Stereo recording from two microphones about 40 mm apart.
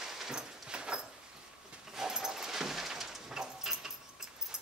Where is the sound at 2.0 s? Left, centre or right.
Centre.